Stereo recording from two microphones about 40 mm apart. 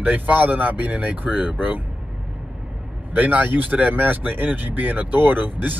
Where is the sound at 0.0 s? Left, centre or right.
Right.